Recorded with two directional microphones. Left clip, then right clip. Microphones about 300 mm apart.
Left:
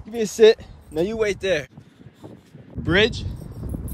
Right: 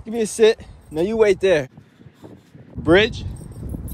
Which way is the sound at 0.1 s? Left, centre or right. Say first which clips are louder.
Left 1 dB; centre.